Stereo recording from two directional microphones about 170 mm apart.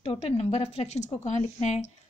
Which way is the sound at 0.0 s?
35° left (ahead or behind).